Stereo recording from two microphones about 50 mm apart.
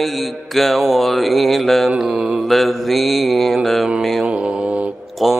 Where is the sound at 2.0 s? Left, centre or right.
Centre.